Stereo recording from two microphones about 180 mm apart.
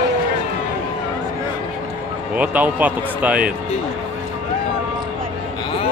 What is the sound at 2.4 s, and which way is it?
Speech, 10° right (ahead or behind).